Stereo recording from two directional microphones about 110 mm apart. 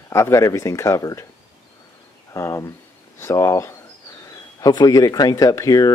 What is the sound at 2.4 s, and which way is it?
Speech, 25° left (ahead or behind).